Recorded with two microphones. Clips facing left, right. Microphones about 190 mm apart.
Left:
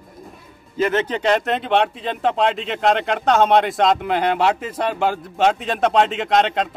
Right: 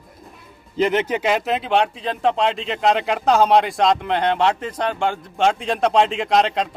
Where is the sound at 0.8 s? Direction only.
15° right (ahead or behind).